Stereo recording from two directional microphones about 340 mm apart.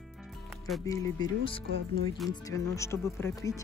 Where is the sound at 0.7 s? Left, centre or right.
Centre.